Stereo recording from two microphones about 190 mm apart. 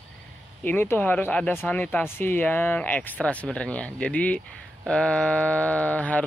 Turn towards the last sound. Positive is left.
turn(degrees=5)  # may be behind; listen again after turning